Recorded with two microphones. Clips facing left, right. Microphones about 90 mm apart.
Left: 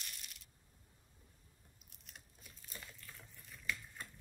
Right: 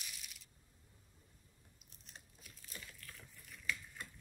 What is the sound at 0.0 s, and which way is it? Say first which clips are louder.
Coin: even; centre (ahead or behind).